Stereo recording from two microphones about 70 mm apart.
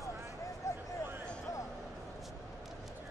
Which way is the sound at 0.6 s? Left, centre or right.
Left.